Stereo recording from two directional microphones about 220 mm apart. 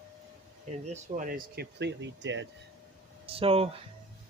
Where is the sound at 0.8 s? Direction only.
35° right (ahead or behind); by 2.5 s 55° right (ahead or behind).